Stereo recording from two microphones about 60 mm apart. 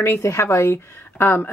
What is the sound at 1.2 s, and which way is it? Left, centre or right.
Speech, left.